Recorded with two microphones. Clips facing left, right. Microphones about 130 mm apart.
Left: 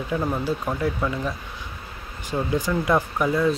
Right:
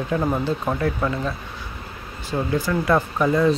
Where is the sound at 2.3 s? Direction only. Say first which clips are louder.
Right 1 dB; 15° left (ahead or behind).